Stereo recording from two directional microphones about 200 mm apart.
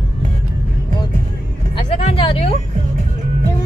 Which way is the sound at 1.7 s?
25° left (ahead or behind).